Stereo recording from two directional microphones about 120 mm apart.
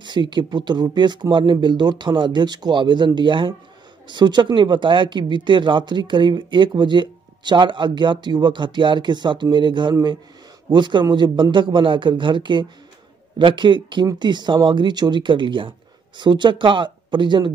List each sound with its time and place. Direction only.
0.0 s speech: 40° right (ahead or behind)